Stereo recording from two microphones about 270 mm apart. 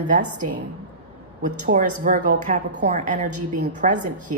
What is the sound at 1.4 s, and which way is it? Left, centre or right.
Speech, right.